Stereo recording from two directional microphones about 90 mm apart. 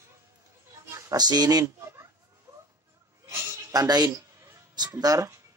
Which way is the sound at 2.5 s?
35° right (ahead or behind).